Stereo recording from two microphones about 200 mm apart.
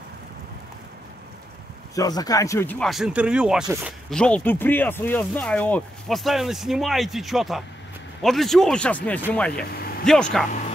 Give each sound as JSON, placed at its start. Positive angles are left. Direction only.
{"t": 2.0, "sound": "speech", "side_deg": 20}
{"t": 9.6, "sound": "vehicle", "side_deg": 50}
{"t": 10.0, "sound": "speech", "side_deg": 5}